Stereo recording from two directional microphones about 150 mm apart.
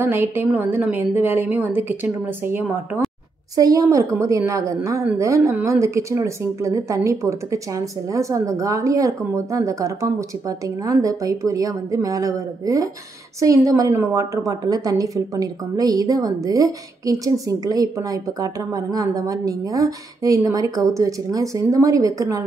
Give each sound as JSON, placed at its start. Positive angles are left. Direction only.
{"t": 0.0, "sound": "a woman's voice", "side_deg": -15}
{"t": 3.5, "sound": "a woman's voice", "side_deg": -25}